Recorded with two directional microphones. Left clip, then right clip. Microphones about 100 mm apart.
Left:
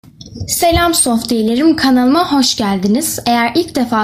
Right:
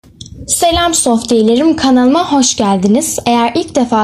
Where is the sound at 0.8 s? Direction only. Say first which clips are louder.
Right 2 dB; 30° right (ahead or behind).